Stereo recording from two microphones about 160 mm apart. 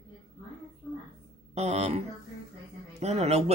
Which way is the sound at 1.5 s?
45° right (ahead or behind).